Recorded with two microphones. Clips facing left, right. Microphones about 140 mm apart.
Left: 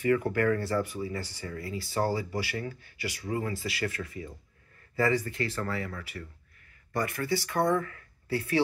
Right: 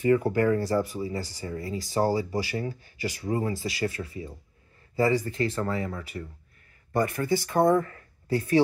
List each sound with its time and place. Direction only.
0.0 s speech: 30° right (ahead or behind)
7.2 s speech: 40° right (ahead or behind)